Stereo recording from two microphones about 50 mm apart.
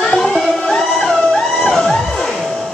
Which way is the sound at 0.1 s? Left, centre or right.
Centre.